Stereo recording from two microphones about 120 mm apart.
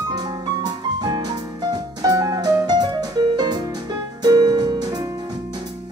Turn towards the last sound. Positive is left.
turn(degrees=-35)  # may be behind; listen again after turning